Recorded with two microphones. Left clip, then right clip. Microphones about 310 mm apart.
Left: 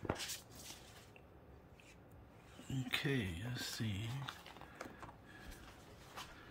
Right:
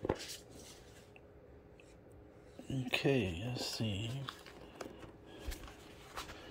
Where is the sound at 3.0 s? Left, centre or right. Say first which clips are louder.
Right 7 dB; right.